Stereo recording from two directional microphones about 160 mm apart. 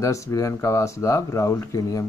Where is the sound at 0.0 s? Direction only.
20° left (ahead or behind).